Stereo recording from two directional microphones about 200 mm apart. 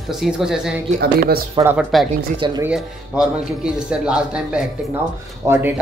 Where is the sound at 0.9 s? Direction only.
50° right (ahead or behind).